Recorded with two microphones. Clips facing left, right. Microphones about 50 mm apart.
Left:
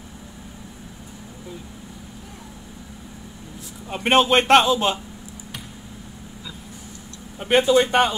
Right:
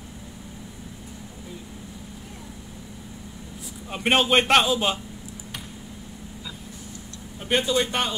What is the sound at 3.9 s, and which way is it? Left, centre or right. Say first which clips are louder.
A man's voice: left 3 dB; centre.